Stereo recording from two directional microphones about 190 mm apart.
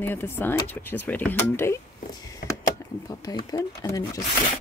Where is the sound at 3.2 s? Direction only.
20° left (ahead or behind).